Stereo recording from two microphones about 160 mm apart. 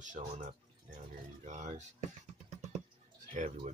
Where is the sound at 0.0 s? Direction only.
50° right (ahead or behind).